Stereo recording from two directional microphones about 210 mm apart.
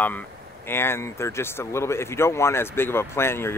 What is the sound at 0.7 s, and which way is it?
Speech, 10° left (ahead or behind).